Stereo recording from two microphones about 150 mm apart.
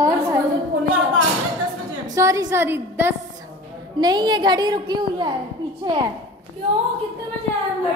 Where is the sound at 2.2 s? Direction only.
20° right (ahead or behind).